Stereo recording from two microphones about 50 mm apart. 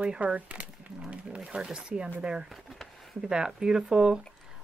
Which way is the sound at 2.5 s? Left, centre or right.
Centre.